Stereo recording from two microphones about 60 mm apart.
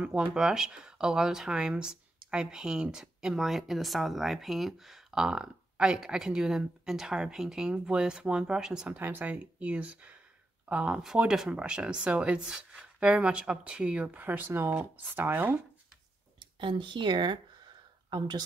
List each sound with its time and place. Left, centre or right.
0.0 s speech: centre
8.8 s speech: right